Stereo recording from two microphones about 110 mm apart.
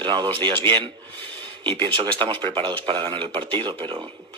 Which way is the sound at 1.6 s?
50° right (ahead or behind).